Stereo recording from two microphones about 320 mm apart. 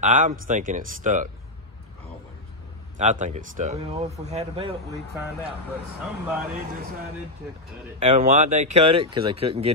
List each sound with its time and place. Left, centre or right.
0.0 s speech: right
3.0 s speech: right
8.0 s speech: right